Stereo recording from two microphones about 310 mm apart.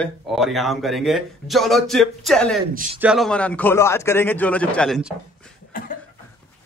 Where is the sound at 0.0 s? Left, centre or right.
Centre.